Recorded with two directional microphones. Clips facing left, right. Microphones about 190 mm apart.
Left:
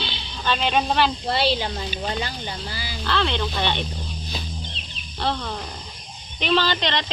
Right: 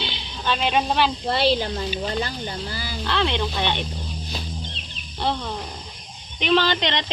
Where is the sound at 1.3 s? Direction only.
50° right (ahead or behind).